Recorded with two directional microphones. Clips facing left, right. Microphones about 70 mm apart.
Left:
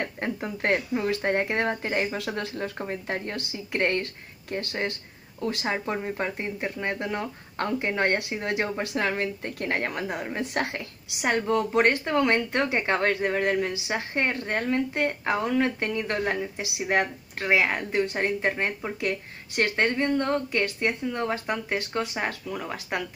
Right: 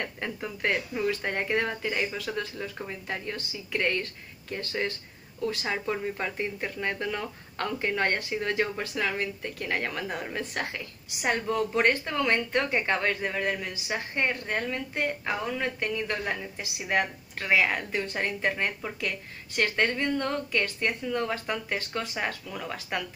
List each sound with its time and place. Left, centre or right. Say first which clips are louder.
0.0 s speech: left 4 dB; left
8.9 s speech: left 3 dB; left
10.0 s a woman's voice: left 2 dB; centre
10.6 s speech: left 4 dB; left
11.5 s speech: left 3 dB; left